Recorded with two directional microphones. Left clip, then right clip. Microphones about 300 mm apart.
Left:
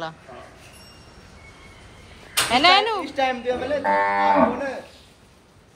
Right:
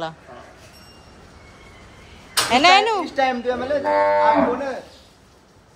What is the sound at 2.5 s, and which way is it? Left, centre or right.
Speech, centre.